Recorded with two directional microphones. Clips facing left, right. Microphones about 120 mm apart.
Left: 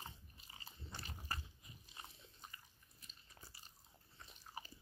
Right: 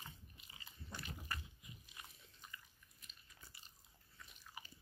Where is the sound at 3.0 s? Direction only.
35° left (ahead or behind).